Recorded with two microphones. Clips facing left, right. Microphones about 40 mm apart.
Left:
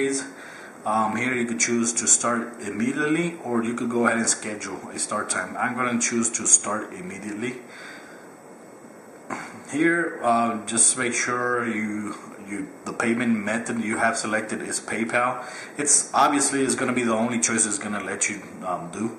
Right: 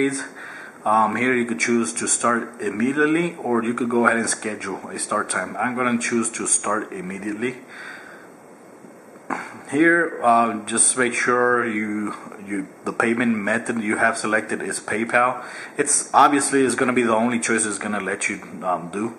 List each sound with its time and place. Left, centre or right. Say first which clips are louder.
0.0 s speech: right 3 dB; centre
9.3 s speech: right 5 dB; centre
11.7 s speech: right 3 dB; centre